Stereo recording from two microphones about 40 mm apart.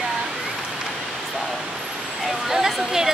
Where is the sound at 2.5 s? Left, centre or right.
Centre.